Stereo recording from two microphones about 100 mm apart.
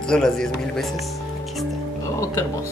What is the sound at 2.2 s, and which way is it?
Speech, 30° left (ahead or behind).